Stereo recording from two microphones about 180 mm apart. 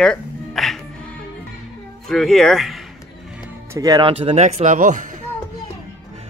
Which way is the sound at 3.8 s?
20° right (ahead or behind).